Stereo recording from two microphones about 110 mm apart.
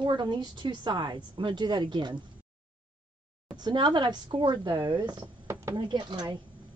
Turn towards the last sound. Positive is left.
turn(degrees=-45)  # may be behind; listen again after turning